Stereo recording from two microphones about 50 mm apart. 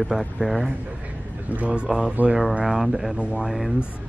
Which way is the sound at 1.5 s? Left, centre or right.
Right.